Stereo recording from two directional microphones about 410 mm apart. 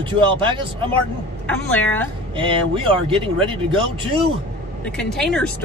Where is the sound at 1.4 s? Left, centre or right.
Centre.